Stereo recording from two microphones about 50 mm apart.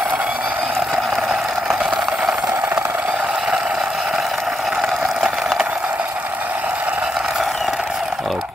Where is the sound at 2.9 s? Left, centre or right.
Centre.